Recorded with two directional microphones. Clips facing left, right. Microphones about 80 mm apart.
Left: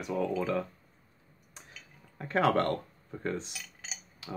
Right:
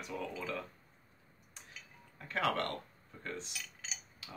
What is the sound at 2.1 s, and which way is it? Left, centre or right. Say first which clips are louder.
Speech: left 8 dB; left.